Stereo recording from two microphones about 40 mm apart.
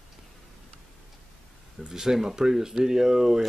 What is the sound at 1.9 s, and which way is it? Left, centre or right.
Speech, centre.